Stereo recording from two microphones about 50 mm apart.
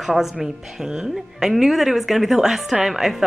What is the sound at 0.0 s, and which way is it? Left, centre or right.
A woman's voice, centre.